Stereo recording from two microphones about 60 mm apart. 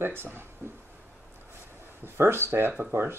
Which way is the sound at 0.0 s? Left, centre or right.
Right.